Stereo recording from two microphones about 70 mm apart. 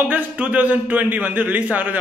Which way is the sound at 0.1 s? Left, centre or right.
Right.